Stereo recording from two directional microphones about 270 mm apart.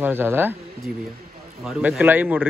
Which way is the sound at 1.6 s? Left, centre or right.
Centre.